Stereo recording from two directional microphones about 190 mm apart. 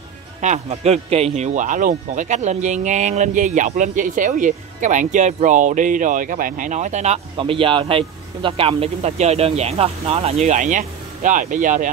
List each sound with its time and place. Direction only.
0.4 s speech: 35° right (ahead or behind)